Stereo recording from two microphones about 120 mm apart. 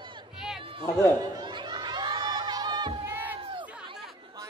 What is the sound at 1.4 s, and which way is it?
Crowd, 40° right (ahead or behind).